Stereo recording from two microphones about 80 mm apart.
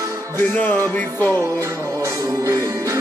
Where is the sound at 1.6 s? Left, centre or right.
Right.